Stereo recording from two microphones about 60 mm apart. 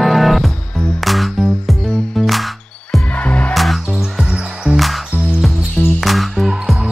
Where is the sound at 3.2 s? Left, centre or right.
Left.